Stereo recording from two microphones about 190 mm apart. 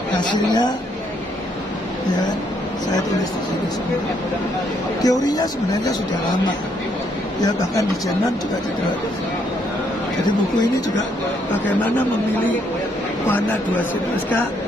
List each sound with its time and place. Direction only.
0.2 s speech: 20° left (ahead or behind)
5.0 s speech: 20° left (ahead or behind)